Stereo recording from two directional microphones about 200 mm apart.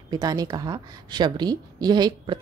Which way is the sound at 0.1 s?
20° right (ahead or behind).